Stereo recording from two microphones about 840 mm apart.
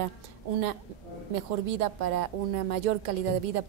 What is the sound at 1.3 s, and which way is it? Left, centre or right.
A woman's voice, right.